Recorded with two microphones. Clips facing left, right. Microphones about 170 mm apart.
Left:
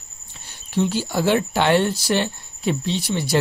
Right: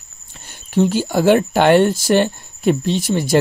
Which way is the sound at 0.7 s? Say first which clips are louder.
Right 5 dB; 50° right (ahead or behind).